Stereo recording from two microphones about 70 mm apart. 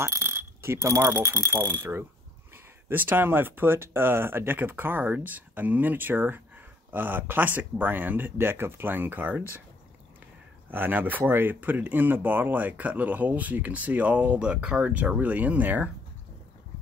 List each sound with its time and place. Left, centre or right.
0.0 s speech: right
10.7 s speech: right